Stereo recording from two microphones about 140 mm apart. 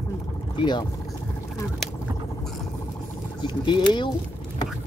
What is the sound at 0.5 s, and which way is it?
Speech, 35° left (ahead or behind).